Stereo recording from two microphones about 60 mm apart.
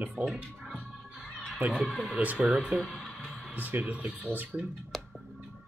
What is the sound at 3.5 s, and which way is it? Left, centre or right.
Speech, right.